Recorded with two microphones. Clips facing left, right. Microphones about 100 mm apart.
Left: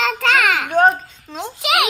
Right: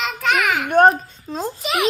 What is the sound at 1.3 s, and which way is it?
Speech, 35° right (ahead or behind).